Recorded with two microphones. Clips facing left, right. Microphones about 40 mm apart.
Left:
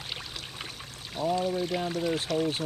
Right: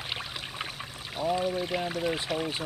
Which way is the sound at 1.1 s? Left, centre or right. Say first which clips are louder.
Even; centre.